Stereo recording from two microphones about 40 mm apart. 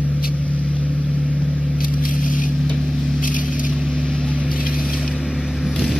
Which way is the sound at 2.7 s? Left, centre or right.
Centre.